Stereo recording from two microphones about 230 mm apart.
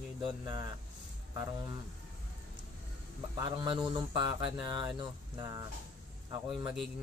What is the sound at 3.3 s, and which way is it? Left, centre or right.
Speech, centre.